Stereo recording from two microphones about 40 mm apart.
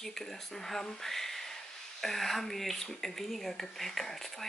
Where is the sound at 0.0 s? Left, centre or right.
Centre.